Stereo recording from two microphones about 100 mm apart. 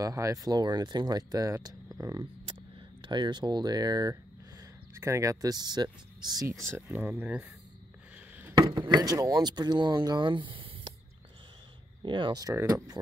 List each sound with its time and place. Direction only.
0.0 s speech: 35° right (ahead or behind)
3.0 s speech: 50° right (ahead or behind)
4.9 s speech: 30° right (ahead or behind)
6.9 s speech: 20° right (ahead or behind)
8.5 s speech: 50° right (ahead or behind)
12.0 s speech: 50° right (ahead or behind)
12.5 s speech: 25° right (ahead or behind)